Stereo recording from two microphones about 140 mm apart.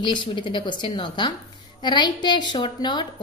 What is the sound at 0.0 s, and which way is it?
A woman's voice, 35° left (ahead or behind).